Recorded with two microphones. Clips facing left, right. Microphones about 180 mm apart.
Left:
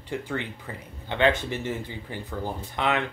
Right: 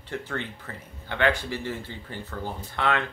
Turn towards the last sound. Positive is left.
turn(degrees=15)  # may be behind; listen again after turning